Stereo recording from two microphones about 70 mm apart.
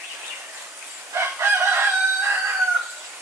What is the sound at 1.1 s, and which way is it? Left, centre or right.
Chicken, right.